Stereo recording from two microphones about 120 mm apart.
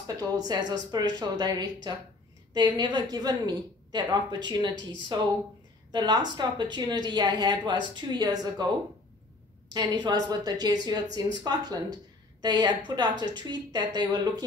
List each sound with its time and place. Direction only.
0.0 s a woman's voice: 35° right (ahead or behind)
9.8 s a woman's voice: 35° right (ahead or behind)